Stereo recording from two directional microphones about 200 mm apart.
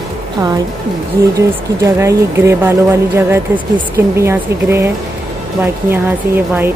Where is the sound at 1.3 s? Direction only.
15° right (ahead or behind).